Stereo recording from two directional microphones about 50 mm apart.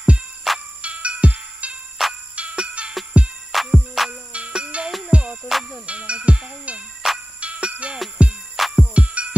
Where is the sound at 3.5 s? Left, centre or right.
Centre.